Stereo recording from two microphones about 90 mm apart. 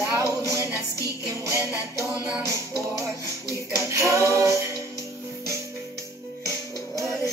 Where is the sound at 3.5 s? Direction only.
35° right (ahead or behind).